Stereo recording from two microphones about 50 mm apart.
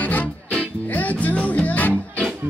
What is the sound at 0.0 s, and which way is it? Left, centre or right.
Music, left.